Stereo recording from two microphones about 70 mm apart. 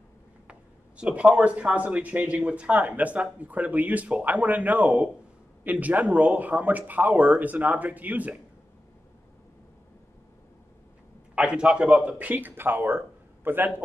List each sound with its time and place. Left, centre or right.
0.5 s speech: centre
11.3 s speech: centre; by 13.7 s right